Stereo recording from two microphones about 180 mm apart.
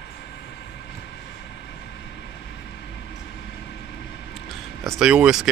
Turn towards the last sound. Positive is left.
turn(degrees=-5)  # may be behind; listen again after turning